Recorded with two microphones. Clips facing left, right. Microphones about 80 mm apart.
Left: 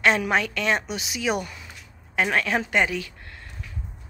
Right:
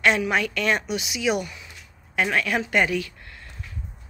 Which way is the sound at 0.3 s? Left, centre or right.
Left.